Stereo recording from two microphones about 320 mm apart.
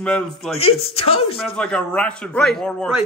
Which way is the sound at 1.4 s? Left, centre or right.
Centre.